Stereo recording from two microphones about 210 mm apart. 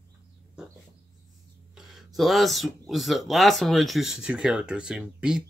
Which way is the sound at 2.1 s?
Centre (ahead or behind).